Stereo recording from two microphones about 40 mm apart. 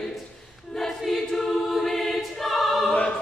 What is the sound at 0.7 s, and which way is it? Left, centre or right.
Choir, centre.